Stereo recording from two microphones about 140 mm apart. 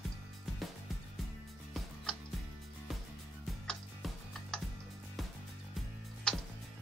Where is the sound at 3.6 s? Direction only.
5° left (ahead or behind).